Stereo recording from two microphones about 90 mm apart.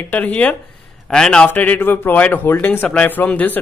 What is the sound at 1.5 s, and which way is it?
A man's voice, 20° left (ahead or behind).